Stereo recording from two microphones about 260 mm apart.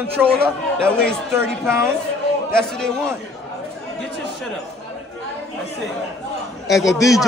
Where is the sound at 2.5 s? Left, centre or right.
Centre.